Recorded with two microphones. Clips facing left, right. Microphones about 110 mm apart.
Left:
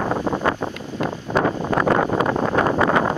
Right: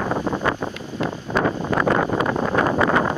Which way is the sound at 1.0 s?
45° left (ahead or behind).